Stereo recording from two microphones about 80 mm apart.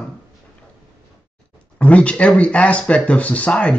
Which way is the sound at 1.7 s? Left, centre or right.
Centre.